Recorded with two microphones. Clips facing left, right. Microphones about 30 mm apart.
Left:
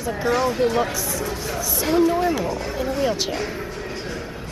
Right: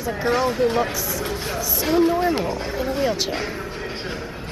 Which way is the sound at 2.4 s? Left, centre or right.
Right.